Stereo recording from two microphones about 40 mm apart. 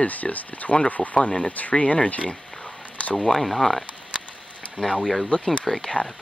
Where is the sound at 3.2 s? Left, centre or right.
Centre.